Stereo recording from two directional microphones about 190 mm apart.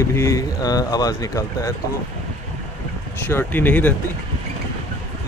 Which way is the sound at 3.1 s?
10° left (ahead or behind).